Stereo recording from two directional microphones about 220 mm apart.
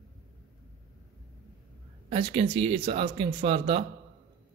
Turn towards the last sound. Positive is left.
turn(degrees=-25)  # may be behind; listen again after turning